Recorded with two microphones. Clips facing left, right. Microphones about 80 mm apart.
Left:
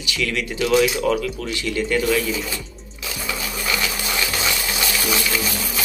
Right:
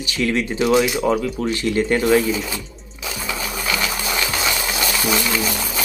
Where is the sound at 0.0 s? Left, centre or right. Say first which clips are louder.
Right 4 dB; right.